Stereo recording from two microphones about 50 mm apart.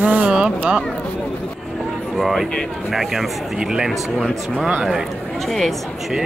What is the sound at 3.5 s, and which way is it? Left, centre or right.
Speech, centre.